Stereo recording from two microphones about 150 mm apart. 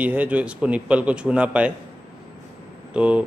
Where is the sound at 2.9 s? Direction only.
10° right (ahead or behind).